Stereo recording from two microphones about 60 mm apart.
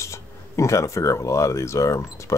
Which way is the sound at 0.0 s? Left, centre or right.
Left.